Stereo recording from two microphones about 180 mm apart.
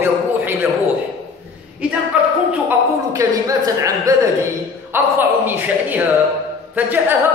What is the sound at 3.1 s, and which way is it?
A man's voice, 20° right (ahead or behind).